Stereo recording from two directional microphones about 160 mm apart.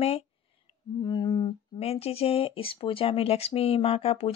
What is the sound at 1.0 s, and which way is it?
Speech, 25° left (ahead or behind).